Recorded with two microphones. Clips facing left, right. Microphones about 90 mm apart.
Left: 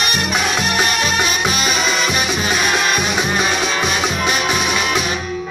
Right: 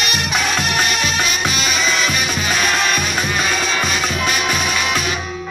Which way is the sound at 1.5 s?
30° left (ahead or behind).